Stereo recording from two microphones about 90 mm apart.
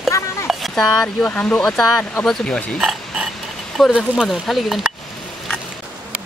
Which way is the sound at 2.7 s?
5° right (ahead or behind).